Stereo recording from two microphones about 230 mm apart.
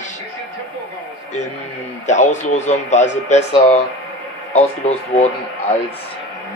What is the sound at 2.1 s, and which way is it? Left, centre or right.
Speech, left.